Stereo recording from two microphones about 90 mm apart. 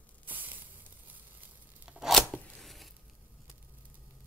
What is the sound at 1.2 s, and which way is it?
Tearing, 15° right (ahead or behind).